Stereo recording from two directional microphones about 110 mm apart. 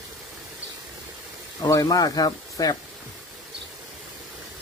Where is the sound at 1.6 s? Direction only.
35° left (ahead or behind).